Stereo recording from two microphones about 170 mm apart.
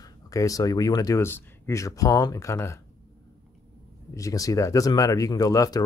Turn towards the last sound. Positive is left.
turn(degrees=20)  # may be behind; listen again after turning